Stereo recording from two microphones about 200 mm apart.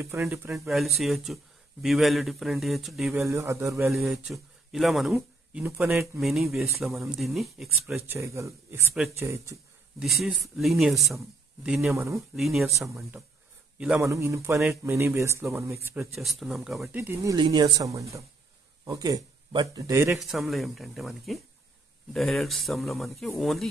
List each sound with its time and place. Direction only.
0.0 s speech: 15° right (ahead or behind)
0.5 s speech: centre (ahead or behind)
3.3 s speech: 15° right (ahead or behind)
3.8 s speech: centre (ahead or behind)
7.9 s speech: 15° right (ahead or behind)
10.0 s speech: centre (ahead or behind)
11.9 s speech: 15° right (ahead or behind)
12.4 s speech: centre (ahead or behind)
12.7 s speech: 15° right (ahead or behind)
16.0 s speech: centre (ahead or behind)
17.1 s speech: 15° right (ahead or behind)
20.2 s speech: centre (ahead or behind)